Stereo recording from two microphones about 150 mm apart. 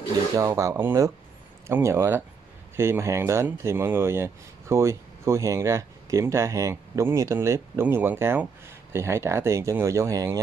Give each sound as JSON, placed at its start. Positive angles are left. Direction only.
{"t": 0.4, "sound": "speech", "side_deg": -20}